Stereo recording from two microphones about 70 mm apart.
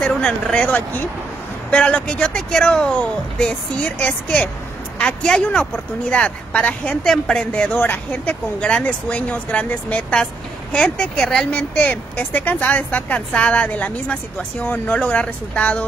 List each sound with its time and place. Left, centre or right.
0.0 s speech: centre
7.8 s speech: left; by 11.6 s centre
11.7 s speech: left